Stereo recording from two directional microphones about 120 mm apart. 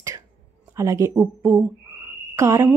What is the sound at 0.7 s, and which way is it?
Speech, 25° right (ahead or behind).